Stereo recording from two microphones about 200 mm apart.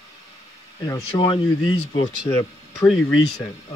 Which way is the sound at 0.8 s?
20° left (ahead or behind).